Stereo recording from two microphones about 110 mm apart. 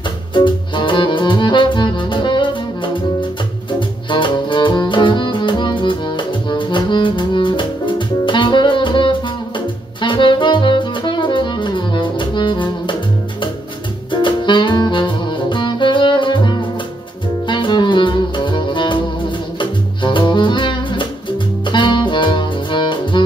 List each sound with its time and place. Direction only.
0.3 s music: 45° left (ahead or behind)
10.0 s saxophone: 45° left (ahead or behind)
14.1 s saxophone: 45° left (ahead or behind)
17.5 s music: 45° left (ahead or behind)